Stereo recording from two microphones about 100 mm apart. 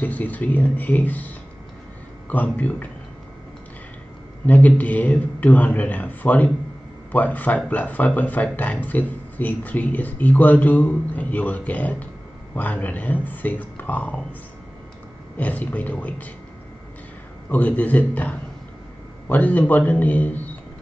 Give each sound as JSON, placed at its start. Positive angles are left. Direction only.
{"t": 0.0, "sound": "speech", "side_deg": 15}
{"t": 4.5, "sound": "speech", "side_deg": 15}
{"t": 15.3, "sound": "speech", "side_deg": 15}
{"t": 17.5, "sound": "speech", "side_deg": 15}